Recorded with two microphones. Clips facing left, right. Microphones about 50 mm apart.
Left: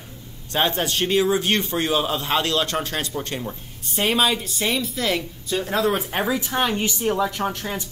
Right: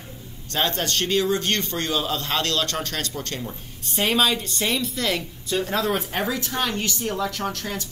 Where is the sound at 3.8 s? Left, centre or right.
Centre.